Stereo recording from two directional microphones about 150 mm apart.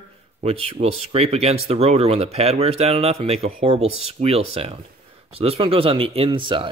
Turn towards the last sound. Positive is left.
turn(degrees=-35)  # may be behind; listen again after turning